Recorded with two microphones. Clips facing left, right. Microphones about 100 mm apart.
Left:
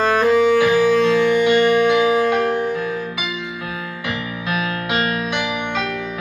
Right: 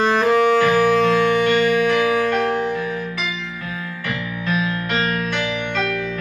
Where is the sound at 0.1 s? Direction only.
10° left (ahead or behind).